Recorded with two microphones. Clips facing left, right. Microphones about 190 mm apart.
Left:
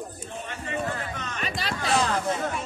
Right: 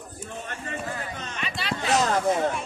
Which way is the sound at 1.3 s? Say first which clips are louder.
Left 3 dB; 40° left (ahead or behind).